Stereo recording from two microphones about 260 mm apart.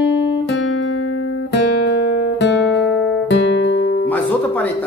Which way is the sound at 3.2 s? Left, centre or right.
Left.